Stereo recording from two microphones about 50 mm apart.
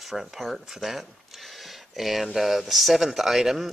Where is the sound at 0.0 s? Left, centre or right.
Centre.